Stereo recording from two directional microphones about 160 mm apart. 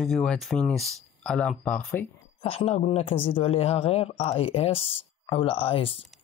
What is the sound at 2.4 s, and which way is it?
Speech, 40° left (ahead or behind).